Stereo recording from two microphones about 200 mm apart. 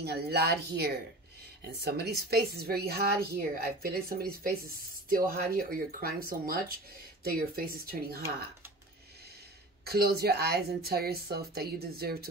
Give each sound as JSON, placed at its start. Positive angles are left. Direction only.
{"t": 0.0, "sound": "a woman's voice", "side_deg": -55}
{"t": 9.8, "sound": "a woman's voice", "side_deg": -50}